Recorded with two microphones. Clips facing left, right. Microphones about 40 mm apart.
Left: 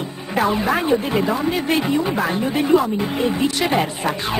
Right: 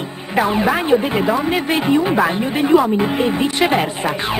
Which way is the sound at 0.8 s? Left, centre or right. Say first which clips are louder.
Right 3 dB; right.